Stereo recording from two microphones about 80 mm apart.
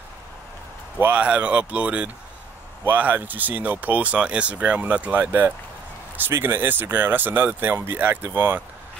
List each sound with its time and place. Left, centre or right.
0.9 s speech: right